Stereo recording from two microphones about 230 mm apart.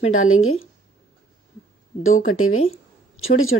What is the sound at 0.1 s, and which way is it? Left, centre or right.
Speech, left.